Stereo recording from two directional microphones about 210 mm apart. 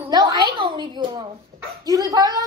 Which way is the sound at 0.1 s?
20° right (ahead or behind).